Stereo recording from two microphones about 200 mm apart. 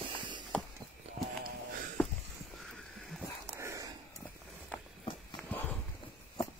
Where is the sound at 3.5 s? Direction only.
15° right (ahead or behind).